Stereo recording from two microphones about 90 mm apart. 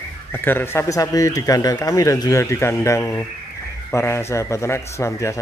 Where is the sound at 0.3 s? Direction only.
25° left (ahead or behind).